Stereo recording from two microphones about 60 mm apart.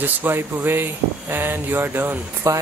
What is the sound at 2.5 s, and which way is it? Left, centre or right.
Speech, right.